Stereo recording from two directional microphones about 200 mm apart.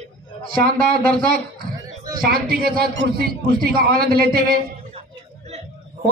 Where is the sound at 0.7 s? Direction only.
45° right (ahead or behind).